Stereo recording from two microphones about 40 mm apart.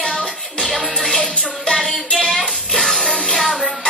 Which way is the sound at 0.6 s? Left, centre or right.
Centre.